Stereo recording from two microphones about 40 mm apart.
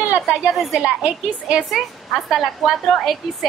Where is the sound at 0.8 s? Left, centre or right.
Right.